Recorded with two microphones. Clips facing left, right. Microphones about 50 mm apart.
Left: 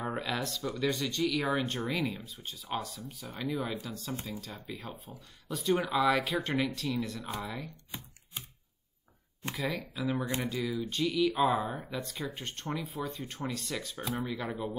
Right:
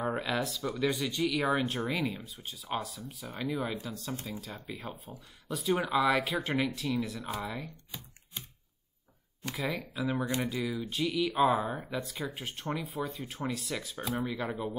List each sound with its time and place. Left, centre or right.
0.0 s speech: centre
7.9 s a sound: left
9.6 s speech: centre